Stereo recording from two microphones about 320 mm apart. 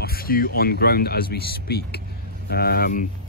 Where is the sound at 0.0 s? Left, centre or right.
Left.